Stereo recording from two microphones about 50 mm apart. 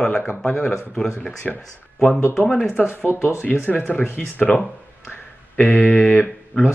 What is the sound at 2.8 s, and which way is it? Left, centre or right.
Speech, left.